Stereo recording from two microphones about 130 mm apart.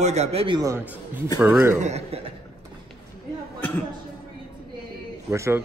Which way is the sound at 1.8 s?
60° right (ahead or behind).